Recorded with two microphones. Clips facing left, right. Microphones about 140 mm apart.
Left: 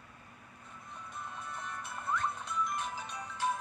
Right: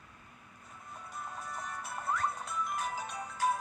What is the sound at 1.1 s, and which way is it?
Music, 35° right (ahead or behind).